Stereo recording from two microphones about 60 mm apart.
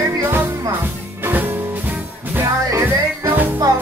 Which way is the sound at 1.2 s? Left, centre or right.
Right.